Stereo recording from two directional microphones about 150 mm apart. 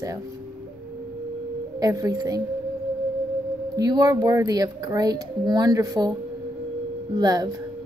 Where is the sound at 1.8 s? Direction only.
20° right (ahead or behind).